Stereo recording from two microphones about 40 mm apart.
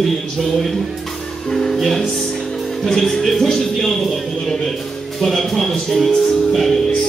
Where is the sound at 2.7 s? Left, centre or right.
Centre.